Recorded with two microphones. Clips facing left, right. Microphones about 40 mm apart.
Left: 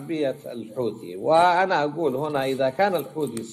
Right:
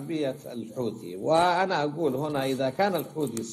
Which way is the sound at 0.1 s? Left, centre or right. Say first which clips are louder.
Left 4 dB; centre.